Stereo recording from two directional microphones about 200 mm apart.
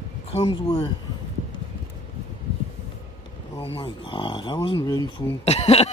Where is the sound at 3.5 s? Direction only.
25° left (ahead or behind).